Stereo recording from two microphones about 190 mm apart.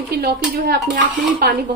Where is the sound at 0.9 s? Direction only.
45° right (ahead or behind).